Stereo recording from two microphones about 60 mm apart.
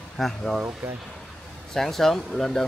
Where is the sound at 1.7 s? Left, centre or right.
Centre.